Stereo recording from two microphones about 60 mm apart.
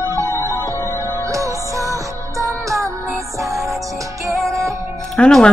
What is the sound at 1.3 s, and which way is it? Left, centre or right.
Music, right.